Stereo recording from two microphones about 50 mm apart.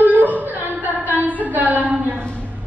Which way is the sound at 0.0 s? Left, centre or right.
Right.